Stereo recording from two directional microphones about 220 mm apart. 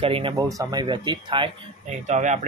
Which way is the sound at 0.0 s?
25° right (ahead or behind).